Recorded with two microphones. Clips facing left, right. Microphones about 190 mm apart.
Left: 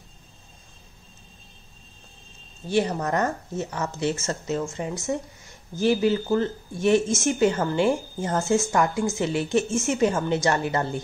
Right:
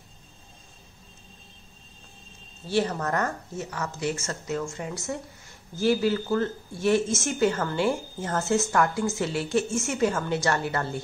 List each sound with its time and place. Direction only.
2.6 s a woman's voice: 15° left (ahead or behind)